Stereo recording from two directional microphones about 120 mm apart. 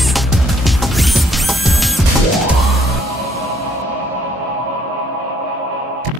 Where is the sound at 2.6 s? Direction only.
Centre (ahead or behind).